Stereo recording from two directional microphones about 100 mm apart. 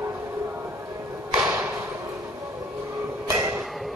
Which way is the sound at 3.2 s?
30° right (ahead or behind).